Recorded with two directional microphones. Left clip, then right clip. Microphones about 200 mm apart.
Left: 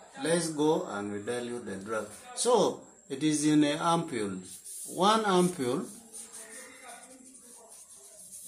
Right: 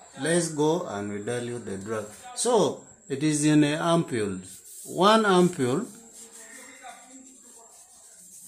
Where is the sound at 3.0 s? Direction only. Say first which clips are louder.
Right 4 dB; 40° right (ahead or behind).